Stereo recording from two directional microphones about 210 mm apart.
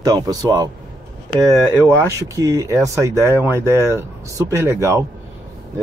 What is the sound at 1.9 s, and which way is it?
Speech, 15° right (ahead or behind).